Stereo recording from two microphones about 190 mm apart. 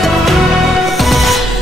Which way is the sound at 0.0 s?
Centre (ahead or behind).